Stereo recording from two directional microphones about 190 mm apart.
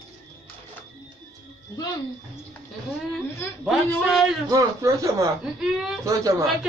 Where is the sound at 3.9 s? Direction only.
Centre (ahead or behind).